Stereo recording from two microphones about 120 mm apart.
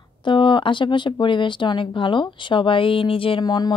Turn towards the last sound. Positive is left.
turn(degrees=35)  # may be behind; listen again after turning